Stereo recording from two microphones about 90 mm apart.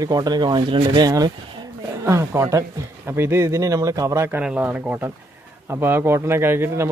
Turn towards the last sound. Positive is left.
turn(degrees=-25)  # may be behind; listen again after turning